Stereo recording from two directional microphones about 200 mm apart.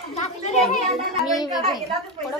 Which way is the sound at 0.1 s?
35° left (ahead or behind).